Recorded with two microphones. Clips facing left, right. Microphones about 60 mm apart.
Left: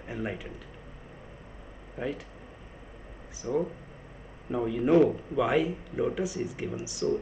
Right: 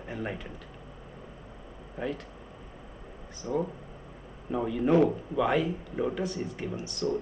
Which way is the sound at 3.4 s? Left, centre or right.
Centre.